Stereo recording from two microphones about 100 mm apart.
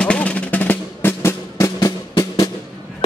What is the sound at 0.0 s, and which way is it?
Music, 10° left (ahead or behind).